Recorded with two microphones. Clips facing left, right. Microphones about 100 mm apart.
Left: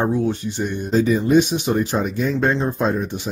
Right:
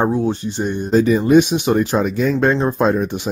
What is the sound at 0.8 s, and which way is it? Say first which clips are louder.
Speech: right 4 dB; 65° right (ahead or behind).